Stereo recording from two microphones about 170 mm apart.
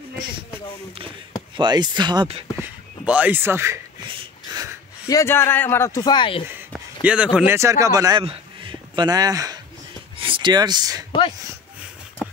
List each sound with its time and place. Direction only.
1.6 s speech: 25° right (ahead or behind)
2.6 s speech: 10° right (ahead or behind)
4.5 s a sound: 20° right (ahead or behind)
5.0 s speech: 15° left (ahead or behind)
7.0 s speech: 5° right (ahead or behind); by 11.1 s 25° right (ahead or behind)
11.1 s speech: 30° left (ahead or behind)